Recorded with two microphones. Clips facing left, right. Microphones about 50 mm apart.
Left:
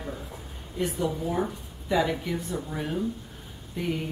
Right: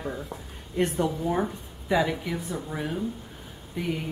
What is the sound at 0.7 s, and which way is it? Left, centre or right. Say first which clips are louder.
Speech: right 4 dB; right.